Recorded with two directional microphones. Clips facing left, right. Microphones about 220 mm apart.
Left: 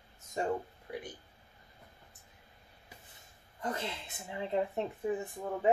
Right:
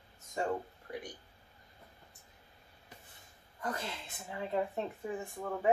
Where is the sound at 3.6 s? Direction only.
20° left (ahead or behind).